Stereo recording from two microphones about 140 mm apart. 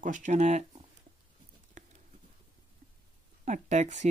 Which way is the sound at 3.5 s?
60° right (ahead or behind).